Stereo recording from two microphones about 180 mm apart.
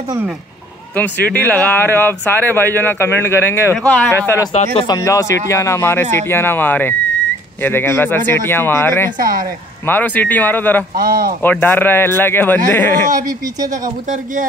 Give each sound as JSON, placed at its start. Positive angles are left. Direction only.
{"t": 1.3, "sound": "speech", "side_deg": 10}
{"t": 9.2, "sound": "speech", "side_deg": -50}
{"t": 9.8, "sound": "speech", "side_deg": 10}
{"t": 11.0, "sound": "speech", "side_deg": -55}
{"t": 11.4, "sound": "speech", "side_deg": 10}
{"t": 13.8, "sound": "speech", "side_deg": -50}